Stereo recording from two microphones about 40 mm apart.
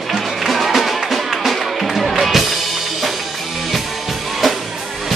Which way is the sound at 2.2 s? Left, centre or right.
Centre.